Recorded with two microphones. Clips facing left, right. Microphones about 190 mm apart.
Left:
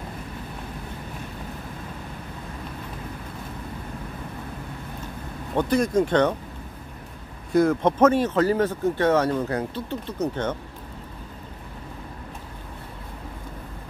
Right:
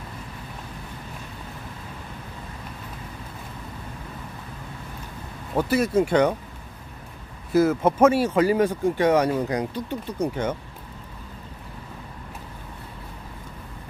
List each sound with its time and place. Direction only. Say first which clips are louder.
5.6 s speech: even; 5° right (ahead or behind)
7.5 s speech: even; 5° right (ahead or behind)